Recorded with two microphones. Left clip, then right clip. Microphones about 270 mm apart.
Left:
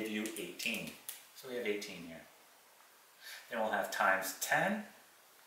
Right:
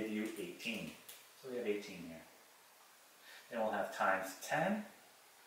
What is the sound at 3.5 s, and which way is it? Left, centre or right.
Speech, centre.